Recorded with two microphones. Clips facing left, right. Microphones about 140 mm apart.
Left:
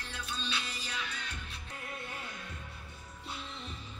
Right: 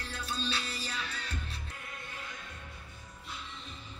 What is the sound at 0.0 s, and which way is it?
Music, 35° right (ahead or behind).